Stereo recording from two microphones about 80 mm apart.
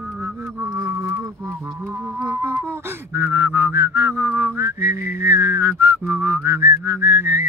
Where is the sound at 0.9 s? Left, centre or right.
Right.